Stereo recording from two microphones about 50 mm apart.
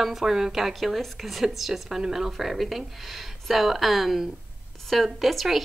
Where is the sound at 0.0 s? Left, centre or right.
Centre.